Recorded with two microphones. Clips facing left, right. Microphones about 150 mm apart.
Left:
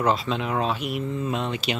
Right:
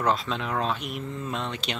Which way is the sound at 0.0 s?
Centre (ahead or behind).